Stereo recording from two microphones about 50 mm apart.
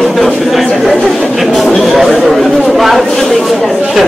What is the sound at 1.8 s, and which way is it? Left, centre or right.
Chatter, centre.